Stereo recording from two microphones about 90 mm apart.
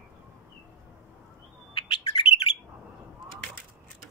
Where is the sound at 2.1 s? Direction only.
90° left.